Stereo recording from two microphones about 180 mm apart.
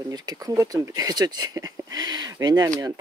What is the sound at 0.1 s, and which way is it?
Speech, 20° right (ahead or behind).